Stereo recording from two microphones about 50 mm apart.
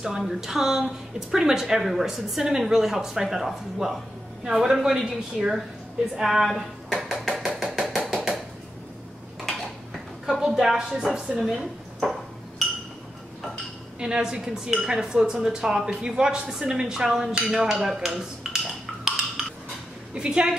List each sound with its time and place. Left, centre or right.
0.2 s a woman's voice: centre
6.2 s a sound: centre
9.4 s a sound: centre
10.9 s speech: centre
12.0 s ping: centre
13.9 s a woman's voice: centre
17.4 s speech: right
17.6 s speech: centre
19.0 s a sound: centre
20.2 s a woman's voice: centre